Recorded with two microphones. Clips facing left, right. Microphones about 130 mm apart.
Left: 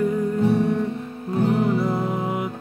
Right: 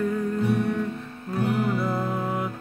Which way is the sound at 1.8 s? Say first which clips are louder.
Left 3 dB; 15° left (ahead or behind).